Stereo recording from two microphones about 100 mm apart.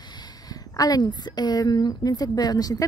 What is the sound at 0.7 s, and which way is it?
Speech, 40° left (ahead or behind).